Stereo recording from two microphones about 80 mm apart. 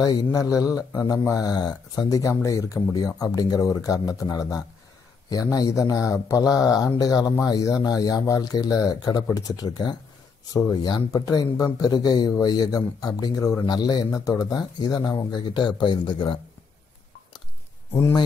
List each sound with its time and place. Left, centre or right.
0.0 s speech: left
0.4 s speech: left
10.5 s speech: left
13.7 s speech: left